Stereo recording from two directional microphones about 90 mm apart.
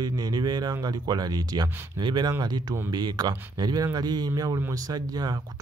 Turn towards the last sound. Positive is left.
turn(degrees=-45)  # may be behind; listen again after turning